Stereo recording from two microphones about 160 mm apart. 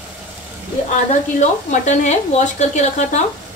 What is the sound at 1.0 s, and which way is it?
Speech, 45° left (ahead or behind).